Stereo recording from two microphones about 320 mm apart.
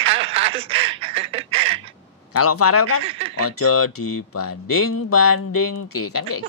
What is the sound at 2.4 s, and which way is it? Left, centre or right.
Speech, left.